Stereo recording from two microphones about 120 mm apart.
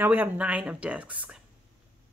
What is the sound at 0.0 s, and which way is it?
Speech, 15° right (ahead or behind).